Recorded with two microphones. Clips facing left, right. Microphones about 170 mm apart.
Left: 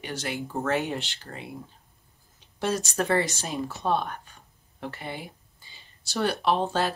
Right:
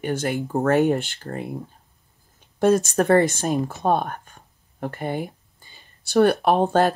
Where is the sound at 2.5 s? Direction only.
50° right (ahead or behind).